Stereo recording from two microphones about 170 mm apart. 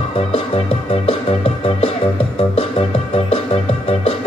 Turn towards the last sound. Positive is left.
turn(degrees=35)  # may be behind; listen again after turning